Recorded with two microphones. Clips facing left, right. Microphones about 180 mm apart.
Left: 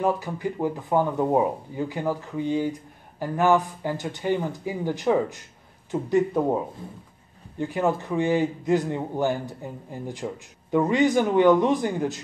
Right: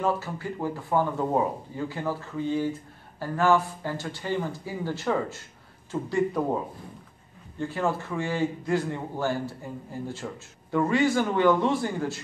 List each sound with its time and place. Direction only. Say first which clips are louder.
0.0 s speech: left 3 dB; 15° left (ahead or behind)